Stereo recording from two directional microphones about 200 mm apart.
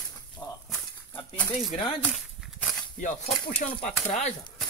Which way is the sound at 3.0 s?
40° left (ahead or behind).